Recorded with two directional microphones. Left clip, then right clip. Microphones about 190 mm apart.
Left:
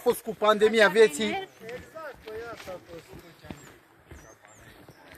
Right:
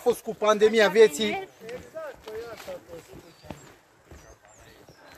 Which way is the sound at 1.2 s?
15° left (ahead or behind).